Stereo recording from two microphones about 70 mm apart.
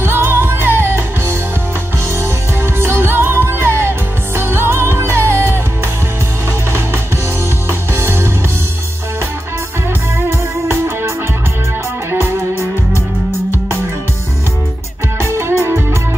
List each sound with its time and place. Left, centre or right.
0.0 s music: right
2.6 s music: right
7.9 s music: right
15.2 s music: right